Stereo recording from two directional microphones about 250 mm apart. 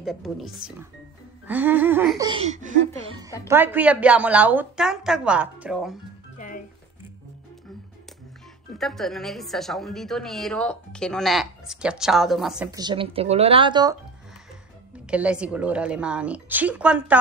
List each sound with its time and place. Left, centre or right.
0.0 s a woman's voice: centre; by 3.2 s right
3.4 s a woman's voice: centre
6.3 s music: left
8.7 s a woman's voice: centre
12.7 s speech: centre
15.0 s a woman's voice: centre